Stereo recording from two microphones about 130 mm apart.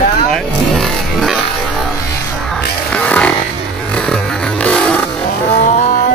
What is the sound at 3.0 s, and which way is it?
Music, 10° left (ahead or behind).